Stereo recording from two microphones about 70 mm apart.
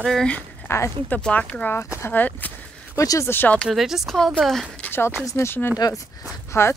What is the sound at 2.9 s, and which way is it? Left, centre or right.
Speech, left.